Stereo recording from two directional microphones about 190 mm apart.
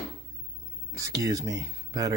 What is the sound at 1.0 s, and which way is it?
Speech, 15° right (ahead or behind).